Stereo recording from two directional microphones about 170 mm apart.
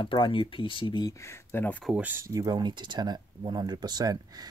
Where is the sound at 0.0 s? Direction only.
30° left (ahead or behind); by 2.0 s 5° left (ahead or behind).